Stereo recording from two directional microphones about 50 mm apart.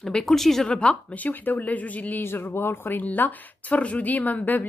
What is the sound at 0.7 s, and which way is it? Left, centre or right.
A woman's voice, left.